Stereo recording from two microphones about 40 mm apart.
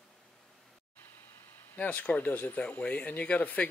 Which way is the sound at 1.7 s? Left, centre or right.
Left.